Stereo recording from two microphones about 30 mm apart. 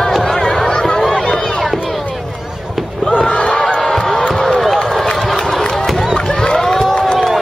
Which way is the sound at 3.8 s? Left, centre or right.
Centre.